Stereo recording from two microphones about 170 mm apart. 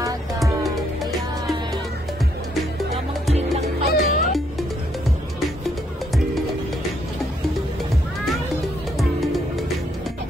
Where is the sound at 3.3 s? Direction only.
40° right (ahead or behind).